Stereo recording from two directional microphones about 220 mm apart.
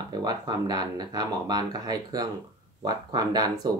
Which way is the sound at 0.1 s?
20° right (ahead or behind).